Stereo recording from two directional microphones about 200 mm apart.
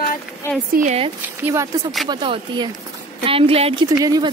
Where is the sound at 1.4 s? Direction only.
15° right (ahead or behind).